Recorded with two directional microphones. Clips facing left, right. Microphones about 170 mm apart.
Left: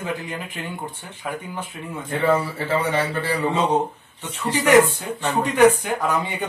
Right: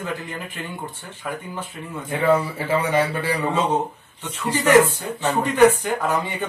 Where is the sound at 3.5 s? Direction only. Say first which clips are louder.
Left 1 dB; 15° left (ahead or behind).